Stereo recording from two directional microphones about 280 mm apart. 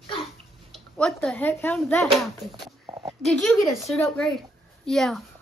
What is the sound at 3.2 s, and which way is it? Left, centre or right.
A woman's voice, centre.